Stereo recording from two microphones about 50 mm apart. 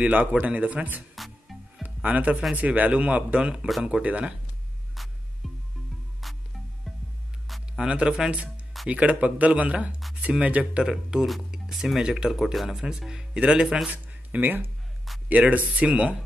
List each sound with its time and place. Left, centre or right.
0.0 s speech: right
1.1 s music: centre
2.0 s speech: right
4.9 s music: centre
7.8 s speech: centre
10.8 s speech: centre
13.1 s speech: centre
13.8 s a sound: right
14.4 s speech: right
15.2 s speech: right